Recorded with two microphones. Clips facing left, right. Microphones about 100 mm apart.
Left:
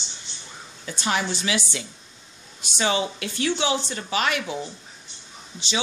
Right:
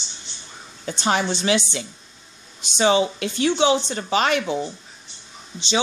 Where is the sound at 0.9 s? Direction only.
25° right (ahead or behind).